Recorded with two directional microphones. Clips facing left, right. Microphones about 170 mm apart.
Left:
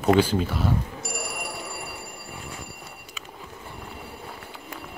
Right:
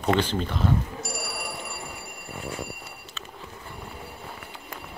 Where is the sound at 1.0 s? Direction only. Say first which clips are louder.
Even; 55° left (ahead or behind).